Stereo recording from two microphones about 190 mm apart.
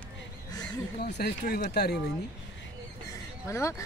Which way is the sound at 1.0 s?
60° left (ahead or behind).